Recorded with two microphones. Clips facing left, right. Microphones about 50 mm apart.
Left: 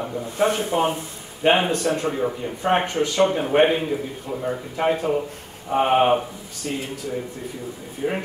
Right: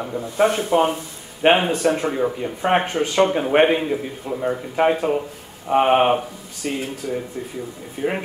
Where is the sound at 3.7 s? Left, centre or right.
Centre.